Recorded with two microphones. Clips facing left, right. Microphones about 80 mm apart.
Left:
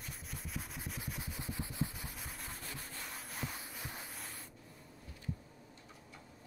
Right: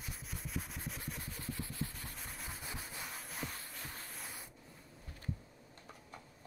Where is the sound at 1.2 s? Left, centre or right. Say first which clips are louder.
Left 1 dB; centre.